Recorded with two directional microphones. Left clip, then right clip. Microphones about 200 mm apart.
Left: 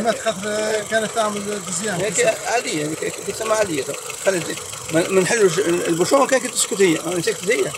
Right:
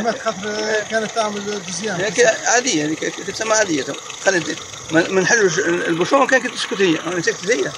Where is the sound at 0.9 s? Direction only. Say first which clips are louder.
Even; 20° left (ahead or behind).